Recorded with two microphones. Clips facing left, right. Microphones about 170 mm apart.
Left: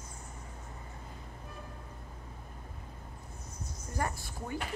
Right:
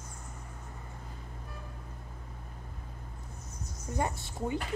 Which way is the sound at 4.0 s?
20° right (ahead or behind).